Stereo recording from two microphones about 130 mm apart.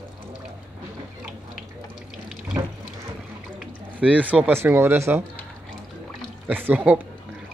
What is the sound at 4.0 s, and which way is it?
Speech, 10° right (ahead or behind).